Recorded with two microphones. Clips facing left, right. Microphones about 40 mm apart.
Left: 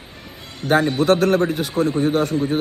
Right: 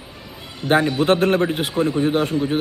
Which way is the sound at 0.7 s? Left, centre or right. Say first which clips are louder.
Even; right.